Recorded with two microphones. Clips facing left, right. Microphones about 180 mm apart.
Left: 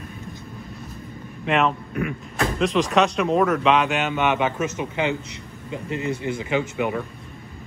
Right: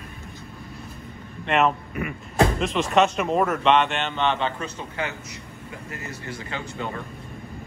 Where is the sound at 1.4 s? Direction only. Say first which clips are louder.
Even; centre (ahead or behind).